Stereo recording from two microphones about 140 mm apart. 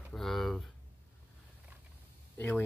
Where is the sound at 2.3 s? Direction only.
10° left (ahead or behind).